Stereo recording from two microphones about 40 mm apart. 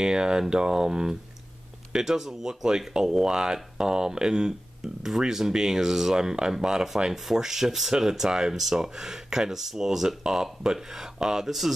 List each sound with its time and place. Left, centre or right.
0.0 s speech: centre